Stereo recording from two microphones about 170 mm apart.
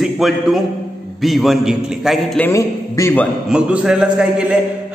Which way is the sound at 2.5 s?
20° left (ahead or behind).